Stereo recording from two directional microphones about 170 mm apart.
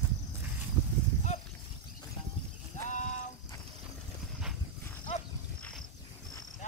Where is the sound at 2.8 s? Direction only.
45° left (ahead or behind).